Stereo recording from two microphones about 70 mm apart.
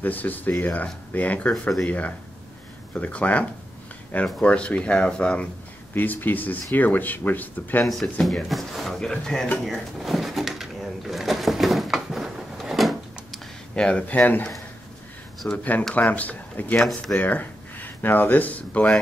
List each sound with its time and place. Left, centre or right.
0.0 s speech: left
0.7 s speech: centre
5.9 s speech: left
7.8 s speech: centre
9.7 s drawer open or close: centre
13.7 s speech: centre
15.5 s speech: left
16.8 s speech: centre
17.2 s speech: left